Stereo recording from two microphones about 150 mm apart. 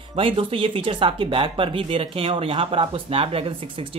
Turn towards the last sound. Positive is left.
turn(degrees=-40)  # may be behind; listen again after turning